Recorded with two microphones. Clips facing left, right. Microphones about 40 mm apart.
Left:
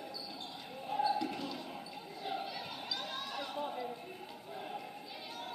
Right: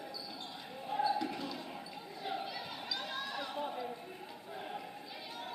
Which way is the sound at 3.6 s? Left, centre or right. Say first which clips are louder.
Even; centre.